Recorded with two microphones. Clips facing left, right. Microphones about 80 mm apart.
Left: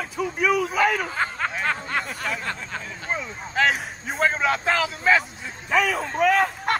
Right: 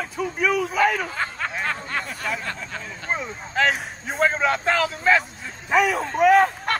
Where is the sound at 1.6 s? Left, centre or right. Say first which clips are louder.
Left 2 dB; left.